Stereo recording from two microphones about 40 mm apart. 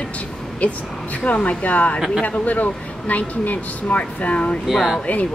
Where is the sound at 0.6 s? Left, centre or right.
Left.